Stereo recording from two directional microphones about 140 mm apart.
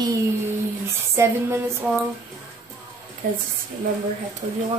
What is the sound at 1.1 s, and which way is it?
Music, 15° right (ahead or behind).